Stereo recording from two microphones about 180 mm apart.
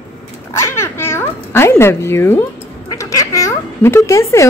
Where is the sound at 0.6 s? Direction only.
15° left (ahead or behind).